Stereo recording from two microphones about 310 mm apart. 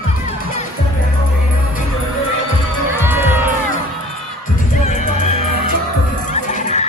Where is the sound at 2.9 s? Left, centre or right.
Centre.